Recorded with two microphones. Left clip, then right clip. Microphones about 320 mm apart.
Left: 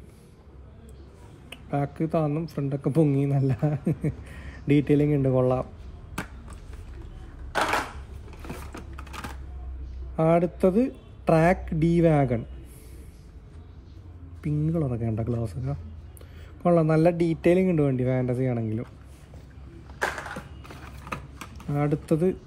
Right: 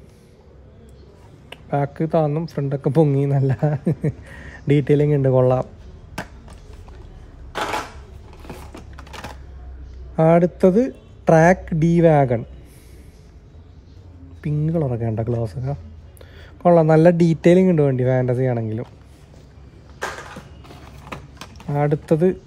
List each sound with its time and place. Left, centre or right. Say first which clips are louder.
1.5 s speech: right 7 dB; right
8.3 s a sound: right 2 dB; centre
10.1 s speech: right 7 dB; right
14.4 s speech: right 5 dB; right
20.6 s a sound: right 2 dB; centre
21.6 s speech: right 7 dB; right